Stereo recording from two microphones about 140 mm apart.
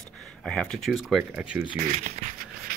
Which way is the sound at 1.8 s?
65° right (ahead or behind).